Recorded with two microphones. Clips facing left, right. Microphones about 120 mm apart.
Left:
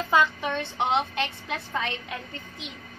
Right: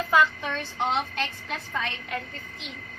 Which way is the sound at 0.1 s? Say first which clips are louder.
Even; 20° left (ahead or behind).